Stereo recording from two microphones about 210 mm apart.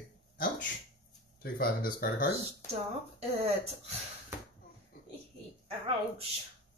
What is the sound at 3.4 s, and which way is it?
Speech, 30° right (ahead or behind).